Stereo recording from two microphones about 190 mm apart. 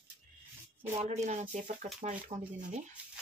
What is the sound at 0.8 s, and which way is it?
A woman's voice, 35° right (ahead or behind).